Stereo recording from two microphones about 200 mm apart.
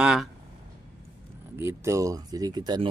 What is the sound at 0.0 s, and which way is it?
Speech, 5° right (ahead or behind).